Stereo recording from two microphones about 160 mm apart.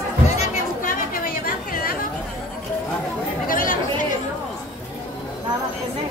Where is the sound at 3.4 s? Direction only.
60° left (ahead or behind).